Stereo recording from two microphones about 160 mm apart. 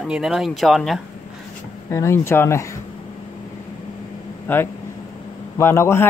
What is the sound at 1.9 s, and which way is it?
Speech, 15° left (ahead or behind).